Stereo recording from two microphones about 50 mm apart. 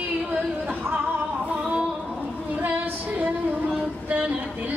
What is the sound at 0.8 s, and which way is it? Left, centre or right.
Music, right.